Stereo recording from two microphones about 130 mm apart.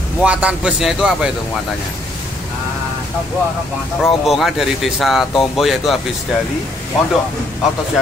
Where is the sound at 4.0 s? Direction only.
Centre (ahead or behind).